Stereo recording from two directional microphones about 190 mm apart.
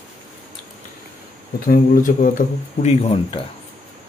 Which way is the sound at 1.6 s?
45° left (ahead or behind).